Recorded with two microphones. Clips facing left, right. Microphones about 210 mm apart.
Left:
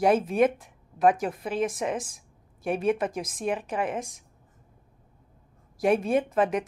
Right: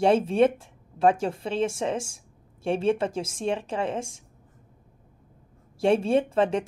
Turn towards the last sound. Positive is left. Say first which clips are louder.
# right 2 dB
turn(degrees=-30)  # may be behind; listen again after turning